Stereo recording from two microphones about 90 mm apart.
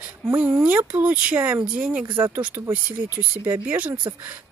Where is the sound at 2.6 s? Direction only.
25° right (ahead or behind).